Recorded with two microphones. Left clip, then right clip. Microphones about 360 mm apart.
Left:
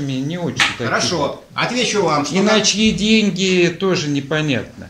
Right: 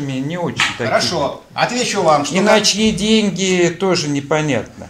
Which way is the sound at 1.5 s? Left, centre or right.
Centre.